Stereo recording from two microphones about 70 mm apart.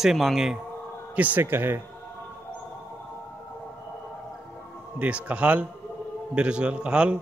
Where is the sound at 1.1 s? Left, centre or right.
Right.